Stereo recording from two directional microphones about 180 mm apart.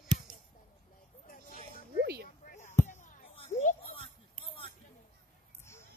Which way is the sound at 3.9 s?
30° left (ahead or behind).